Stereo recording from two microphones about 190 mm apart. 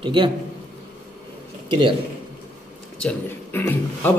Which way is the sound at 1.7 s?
25° right (ahead or behind).